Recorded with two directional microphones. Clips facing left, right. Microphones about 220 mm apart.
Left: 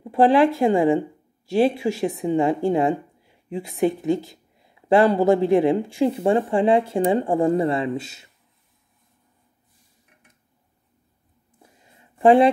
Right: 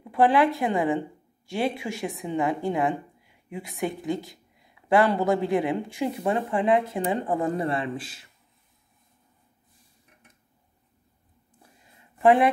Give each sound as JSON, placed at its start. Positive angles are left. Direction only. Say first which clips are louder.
{"t": 0.0, "sound": "a sound", "louder": "left 4 dB", "side_deg": 25}
{"t": 0.6, "sound": "speech", "louder": "left 7 dB", "side_deg": 30}
{"t": 12.2, "sound": "speech", "louder": "left 5 dB", "side_deg": 30}